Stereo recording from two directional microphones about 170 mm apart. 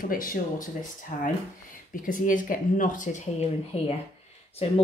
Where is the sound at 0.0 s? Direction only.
55° left (ahead or behind).